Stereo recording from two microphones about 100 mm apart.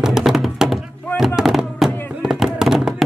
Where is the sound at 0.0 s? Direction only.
5° right (ahead or behind).